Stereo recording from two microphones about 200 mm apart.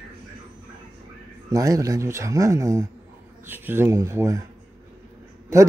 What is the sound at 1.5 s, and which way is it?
A man's voice, 15° right (ahead or behind).